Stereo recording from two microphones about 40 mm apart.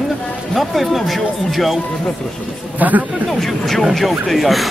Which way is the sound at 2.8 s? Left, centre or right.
Right.